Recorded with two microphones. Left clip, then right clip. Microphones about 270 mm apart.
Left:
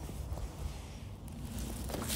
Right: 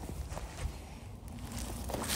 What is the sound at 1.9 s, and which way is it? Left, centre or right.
Walk, right.